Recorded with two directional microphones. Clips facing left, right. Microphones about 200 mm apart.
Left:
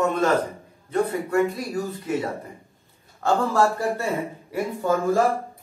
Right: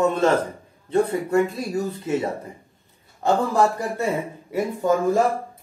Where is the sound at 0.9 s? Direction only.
25° right (ahead or behind).